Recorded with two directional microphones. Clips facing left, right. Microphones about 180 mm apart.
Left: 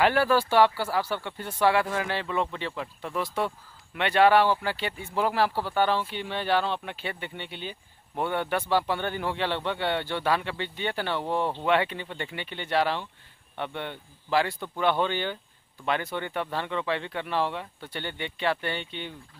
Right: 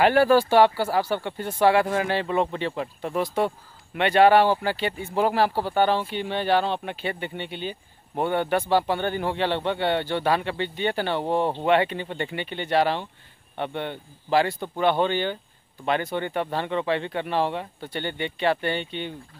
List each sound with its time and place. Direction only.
0.0 s speech: 50° right (ahead or behind)
1.9 s speech: 35° right (ahead or behind)
5.5 s speech: 25° right (ahead or behind)
6.0 s speech: 50° right (ahead or behind)
7.3 s speech: centre (ahead or behind)
8.2 s speech: 45° right (ahead or behind)
10.1 s speech: 45° right (ahead or behind)
11.1 s speech: 30° right (ahead or behind)
11.6 s speech: 45° right (ahead or behind)
15.0 s speech: 50° right (ahead or behind)
17.9 s speech: 55° right (ahead or behind)